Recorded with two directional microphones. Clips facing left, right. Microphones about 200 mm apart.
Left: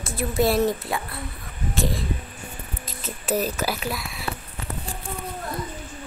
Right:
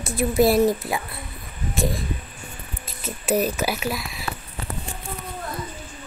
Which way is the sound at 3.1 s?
10° right (ahead or behind).